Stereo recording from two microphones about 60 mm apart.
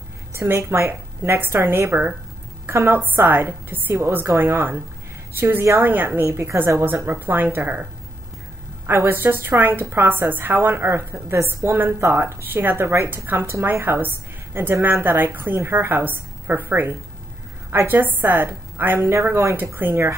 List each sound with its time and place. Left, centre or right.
0.3 s a woman's voice: right
5.9 s a woman's voice: right
6.3 s a woman's voice: right
7.1 s a woman's voice: right
8.8 s a woman's voice: right
18.9 s a woman's voice: right
19.5 s a woman's voice: right